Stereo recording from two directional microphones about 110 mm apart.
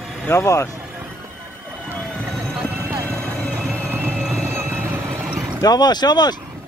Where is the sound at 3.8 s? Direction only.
20° right (ahead or behind).